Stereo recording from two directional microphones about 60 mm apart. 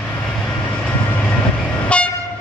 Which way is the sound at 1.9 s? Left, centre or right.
Centre.